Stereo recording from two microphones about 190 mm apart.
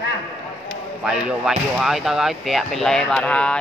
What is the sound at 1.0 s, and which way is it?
Speech, 5° right (ahead or behind).